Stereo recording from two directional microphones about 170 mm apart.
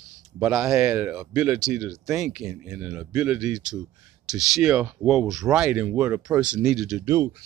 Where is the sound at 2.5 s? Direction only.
15° right (ahead or behind).